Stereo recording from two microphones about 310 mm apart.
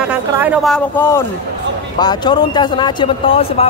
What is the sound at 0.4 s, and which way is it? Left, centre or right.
Speech, centre.